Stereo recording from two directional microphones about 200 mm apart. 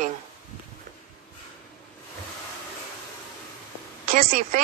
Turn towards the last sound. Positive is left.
turn(degrees=-40)  # may be behind; listen again after turning